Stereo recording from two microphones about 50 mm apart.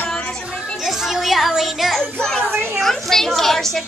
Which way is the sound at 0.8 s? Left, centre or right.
Centre.